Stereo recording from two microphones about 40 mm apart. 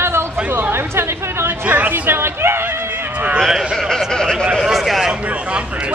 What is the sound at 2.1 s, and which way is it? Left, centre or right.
Speech, right.